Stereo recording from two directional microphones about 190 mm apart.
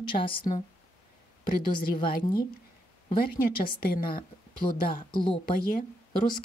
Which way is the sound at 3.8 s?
50° left (ahead or behind).